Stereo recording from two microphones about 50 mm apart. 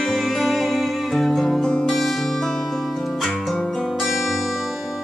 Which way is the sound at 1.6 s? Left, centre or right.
Centre.